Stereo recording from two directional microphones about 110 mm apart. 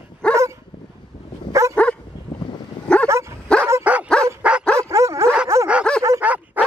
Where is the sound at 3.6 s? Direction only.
15° right (ahead or behind).